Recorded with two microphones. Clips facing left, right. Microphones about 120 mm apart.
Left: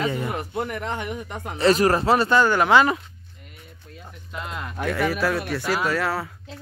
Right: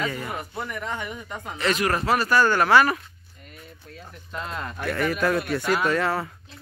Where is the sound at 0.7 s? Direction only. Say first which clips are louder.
Left 3 dB; 60° left (ahead or behind).